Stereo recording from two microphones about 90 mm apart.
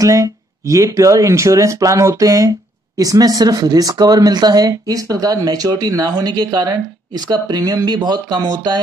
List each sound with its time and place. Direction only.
0.0 s speech: 35° right (ahead or behind)